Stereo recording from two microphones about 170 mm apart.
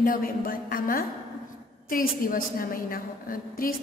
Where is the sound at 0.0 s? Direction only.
55° left (ahead or behind).